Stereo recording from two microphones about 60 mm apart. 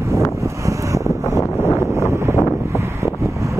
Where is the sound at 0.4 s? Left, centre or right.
Right.